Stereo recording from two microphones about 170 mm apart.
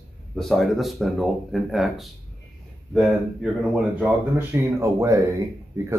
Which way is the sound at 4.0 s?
15° right (ahead or behind).